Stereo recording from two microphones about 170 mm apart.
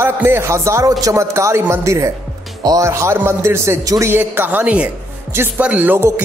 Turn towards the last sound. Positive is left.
turn(degrees=-10)  # may be behind; listen again after turning